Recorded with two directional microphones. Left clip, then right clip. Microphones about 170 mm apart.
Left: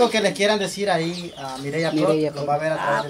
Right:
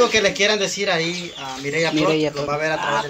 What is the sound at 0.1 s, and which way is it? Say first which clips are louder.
Speech: right 2 dB; 90° left.